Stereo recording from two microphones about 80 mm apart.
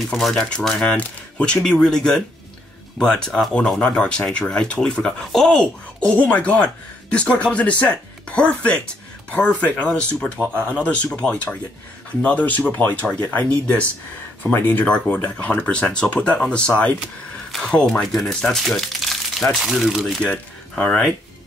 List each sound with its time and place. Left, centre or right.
0.1 s speech: centre
18.0 s speech: centre
20.2 s speech: centre